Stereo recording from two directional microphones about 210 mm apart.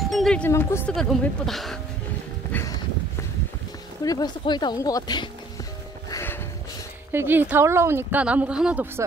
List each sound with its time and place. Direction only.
0.1 s speech: 5° left (ahead or behind)
2.5 s a sound: 5° left (ahead or behind)
4.0 s speech: 20° left (ahead or behind)
6.0 s music: 15° left (ahead or behind)
7.1 s speech: 10° right (ahead or behind)